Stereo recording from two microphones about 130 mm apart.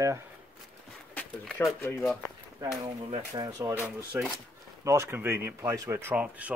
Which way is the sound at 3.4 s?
25° right (ahead or behind).